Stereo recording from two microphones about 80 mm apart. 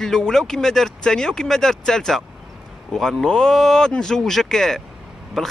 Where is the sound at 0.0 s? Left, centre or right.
Centre.